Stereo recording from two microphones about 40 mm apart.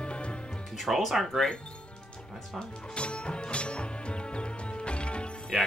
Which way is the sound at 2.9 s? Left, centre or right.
Left.